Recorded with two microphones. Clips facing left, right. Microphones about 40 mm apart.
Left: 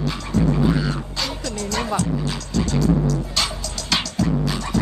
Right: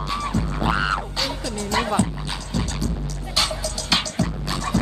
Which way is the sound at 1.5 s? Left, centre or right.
Right.